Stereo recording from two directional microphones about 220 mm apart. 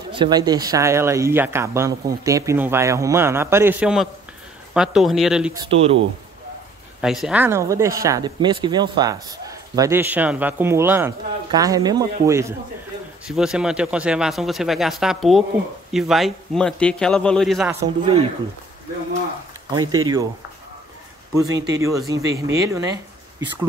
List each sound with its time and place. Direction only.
0.1 s speech: 20° right (ahead or behind); by 5.5 s centre (ahead or behind)
5.5 s speech: 20° right (ahead or behind)
7.0 s speech: centre (ahead or behind)
17.6 s speech: 15° right (ahead or behind)
19.7 s speech: 15° right (ahead or behind)
21.7 s speech: 15° right (ahead or behind)